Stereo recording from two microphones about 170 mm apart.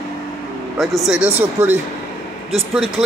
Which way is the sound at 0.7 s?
Centre (ahead or behind).